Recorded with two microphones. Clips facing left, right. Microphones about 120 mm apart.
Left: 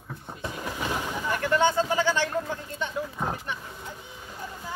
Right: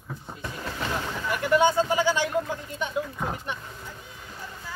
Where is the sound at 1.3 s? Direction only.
10° right (ahead or behind).